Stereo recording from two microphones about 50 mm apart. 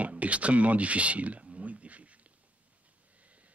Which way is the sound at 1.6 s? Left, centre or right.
Right.